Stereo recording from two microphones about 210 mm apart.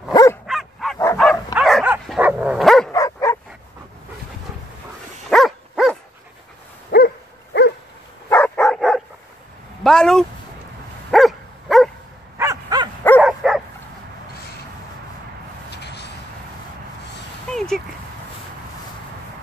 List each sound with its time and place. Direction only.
0.1 s dog: 15° left (ahead or behind)
0.5 s dog: centre (ahead or behind)
2.9 s dog: 15° left (ahead or behind)
5.3 s dog: centre (ahead or behind)
6.9 s dog: 45° left (ahead or behind)
8.3 s dog: 5° left (ahead or behind)
9.8 s a sound: 5° left (ahead or behind)
11.1 s dog: centre (ahead or behind)
12.4 s dog: 15° right (ahead or behind)
13.2 s dog: 5° right (ahead or behind)
15.7 s vehicle: 55° left (ahead or behind)
17.5 s a sound: centre (ahead or behind)